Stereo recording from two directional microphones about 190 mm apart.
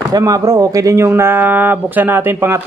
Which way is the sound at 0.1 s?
20° right (ahead or behind).